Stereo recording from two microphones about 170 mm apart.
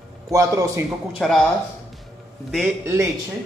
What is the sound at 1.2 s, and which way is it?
Speech, centre (ahead or behind).